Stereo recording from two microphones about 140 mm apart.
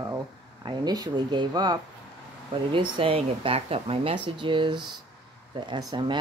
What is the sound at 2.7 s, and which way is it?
A woman's voice, 40° right (ahead or behind).